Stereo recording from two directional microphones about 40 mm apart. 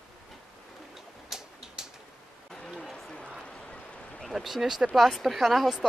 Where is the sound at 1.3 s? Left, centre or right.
Centre.